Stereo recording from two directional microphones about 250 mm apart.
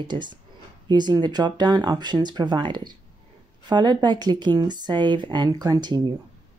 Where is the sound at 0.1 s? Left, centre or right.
Centre.